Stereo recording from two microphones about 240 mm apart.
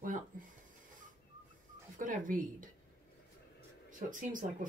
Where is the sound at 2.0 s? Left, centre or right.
Right.